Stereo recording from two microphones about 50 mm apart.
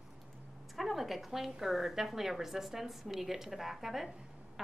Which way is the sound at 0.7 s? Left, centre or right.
Centre.